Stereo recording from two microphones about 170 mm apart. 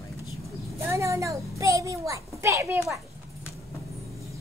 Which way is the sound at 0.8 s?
15° right (ahead or behind).